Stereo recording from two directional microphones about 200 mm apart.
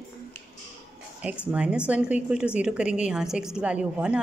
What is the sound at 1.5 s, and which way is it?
A woman's voice, 5° right (ahead or behind).